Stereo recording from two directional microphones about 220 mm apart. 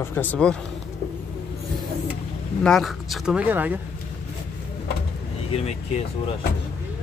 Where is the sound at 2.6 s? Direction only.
Centre (ahead or behind).